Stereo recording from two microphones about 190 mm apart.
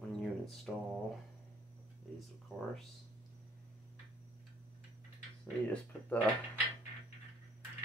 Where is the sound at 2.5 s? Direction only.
Centre (ahead or behind).